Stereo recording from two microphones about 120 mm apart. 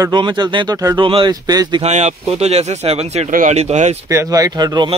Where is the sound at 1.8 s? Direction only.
70° right (ahead or behind).